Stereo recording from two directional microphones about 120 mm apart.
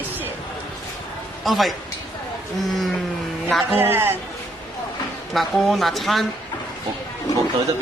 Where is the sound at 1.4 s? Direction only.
Centre (ahead or behind).